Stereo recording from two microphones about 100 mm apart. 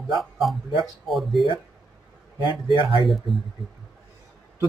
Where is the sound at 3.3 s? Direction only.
Centre (ahead or behind).